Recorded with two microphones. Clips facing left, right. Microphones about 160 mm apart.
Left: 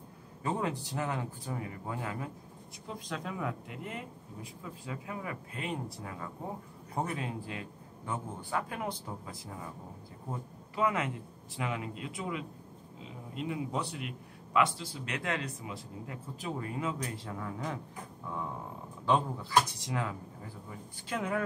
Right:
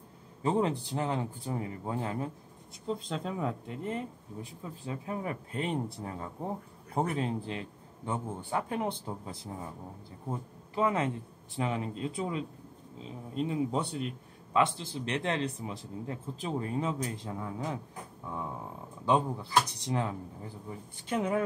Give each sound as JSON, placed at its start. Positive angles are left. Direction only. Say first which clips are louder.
{"t": 0.4, "sound": "a man's voice", "louder": "right 5 dB", "side_deg": -25}
{"t": 10.7, "sound": "a man's voice", "louder": "right 2 dB", "side_deg": -30}
{"t": 19.0, "sound": "a man's voice", "louder": "right 2 dB", "side_deg": -20}